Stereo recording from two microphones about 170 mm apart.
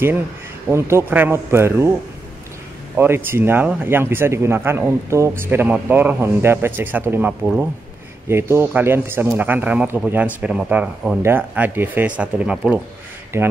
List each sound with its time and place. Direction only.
0.7 s speech: 15° right (ahead or behind)
3.0 s speech: 10° right (ahead or behind)